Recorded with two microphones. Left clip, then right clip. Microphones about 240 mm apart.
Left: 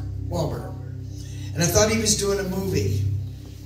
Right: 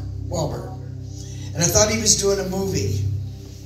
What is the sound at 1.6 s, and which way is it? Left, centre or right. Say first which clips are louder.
Speech: right 2 dB; right.